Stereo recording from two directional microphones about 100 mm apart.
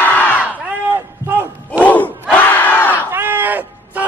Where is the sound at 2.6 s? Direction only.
20° left (ahead or behind).